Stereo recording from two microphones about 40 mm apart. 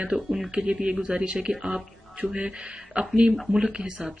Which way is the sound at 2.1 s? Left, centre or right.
Right.